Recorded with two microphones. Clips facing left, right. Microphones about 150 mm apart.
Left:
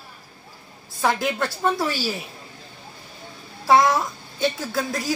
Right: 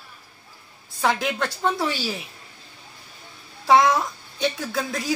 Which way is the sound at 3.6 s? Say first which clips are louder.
Even; centre (ahead or behind).